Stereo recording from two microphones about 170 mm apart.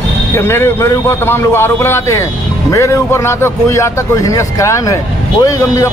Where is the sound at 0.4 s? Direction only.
15° left (ahead or behind).